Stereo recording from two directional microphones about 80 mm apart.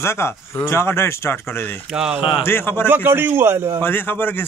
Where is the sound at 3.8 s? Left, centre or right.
Left.